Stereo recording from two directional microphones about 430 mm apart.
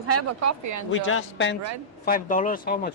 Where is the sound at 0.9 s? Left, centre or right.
Left.